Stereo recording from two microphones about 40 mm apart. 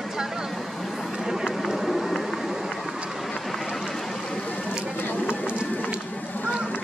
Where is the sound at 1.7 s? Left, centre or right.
Centre.